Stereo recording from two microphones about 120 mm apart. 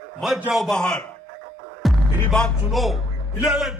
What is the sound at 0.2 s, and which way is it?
A man's voice, centre (ahead or behind).